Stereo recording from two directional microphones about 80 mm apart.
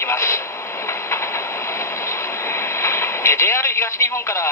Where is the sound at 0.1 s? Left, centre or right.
Left.